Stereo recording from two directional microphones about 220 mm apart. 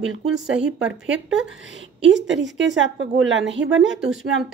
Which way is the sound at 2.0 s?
55° right (ahead or behind).